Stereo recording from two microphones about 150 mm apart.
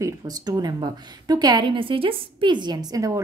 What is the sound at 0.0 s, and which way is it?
A woman's voice, 25° right (ahead or behind).